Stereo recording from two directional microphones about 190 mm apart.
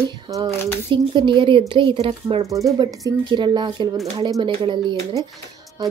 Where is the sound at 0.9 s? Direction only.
25° right (ahead or behind).